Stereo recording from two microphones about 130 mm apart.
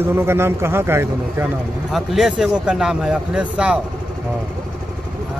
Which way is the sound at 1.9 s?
Centre (ahead or behind).